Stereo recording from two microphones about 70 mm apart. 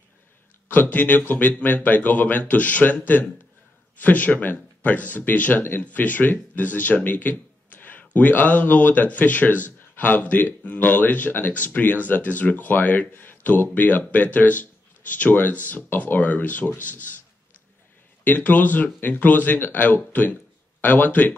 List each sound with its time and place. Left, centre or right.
0.7 s speech: left
18.2 s speech: left